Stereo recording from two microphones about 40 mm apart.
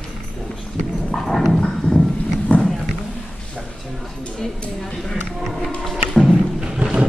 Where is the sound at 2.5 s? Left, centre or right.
Left.